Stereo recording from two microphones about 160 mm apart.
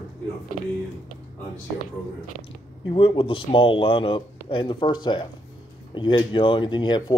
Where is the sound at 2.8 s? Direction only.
35° left (ahead or behind).